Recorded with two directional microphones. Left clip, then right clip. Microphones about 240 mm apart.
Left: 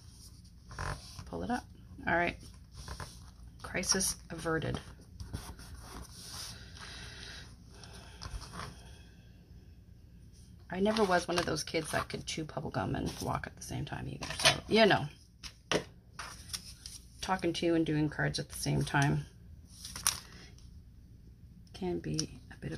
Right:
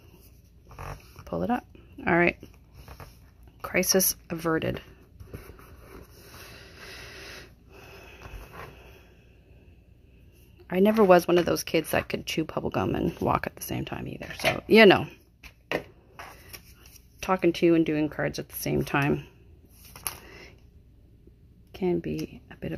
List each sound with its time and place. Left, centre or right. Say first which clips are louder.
1.3 s speech: right 8 dB; right
3.6 s speech: right 9 dB; right
6.5 s a sound: right 4 dB; right
10.7 s speech: right 10 dB; right
17.2 s speech: right 9 dB; right
21.7 s speech: right 8 dB; right